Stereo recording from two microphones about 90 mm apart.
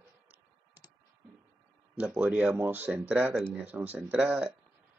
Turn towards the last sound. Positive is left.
turn(degrees=-15)  # may be behind; listen again after turning